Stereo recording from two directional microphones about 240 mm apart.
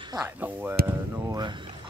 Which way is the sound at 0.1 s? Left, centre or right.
Centre.